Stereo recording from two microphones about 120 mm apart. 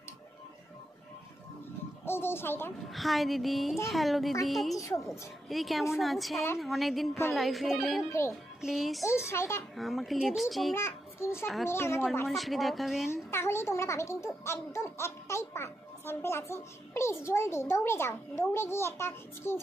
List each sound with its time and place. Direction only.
2.0 s a child's voice: 20° left (ahead or behind)
2.9 s speech: centre (ahead or behind)
4.7 s a child's voice: 25° left (ahead or behind)
5.5 s speech: centre (ahead or behind)
6.3 s a child's voice: 20° left (ahead or behind)
6.6 s speech: centre (ahead or behind)
9.0 s a child's voice: 20° left (ahead or behind)
9.8 s speech: centre (ahead or behind)
10.7 s a child's voice: 20° left (ahead or behind)
12.3 s speech: centre (ahead or behind)
13.1 s a child's voice: 20° left (ahead or behind)